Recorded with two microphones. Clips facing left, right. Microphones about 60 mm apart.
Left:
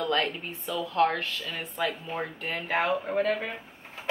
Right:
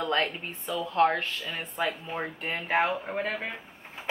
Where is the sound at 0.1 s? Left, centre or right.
Right.